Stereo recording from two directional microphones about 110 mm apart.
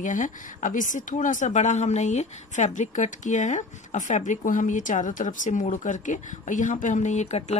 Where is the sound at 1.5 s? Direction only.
90° left.